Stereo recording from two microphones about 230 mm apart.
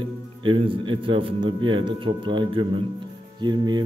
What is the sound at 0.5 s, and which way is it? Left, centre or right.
Speech, right.